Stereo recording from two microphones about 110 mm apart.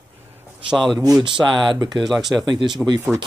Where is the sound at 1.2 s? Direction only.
45° right (ahead or behind).